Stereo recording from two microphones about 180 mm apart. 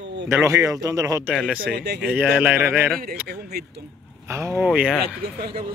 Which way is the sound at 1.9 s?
5° right (ahead or behind).